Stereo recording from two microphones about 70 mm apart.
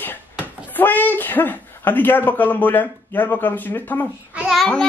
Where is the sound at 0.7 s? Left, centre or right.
Left.